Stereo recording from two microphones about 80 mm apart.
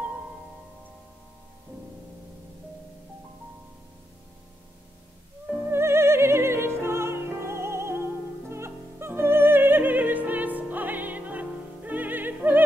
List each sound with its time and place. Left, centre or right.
5.6 s music: right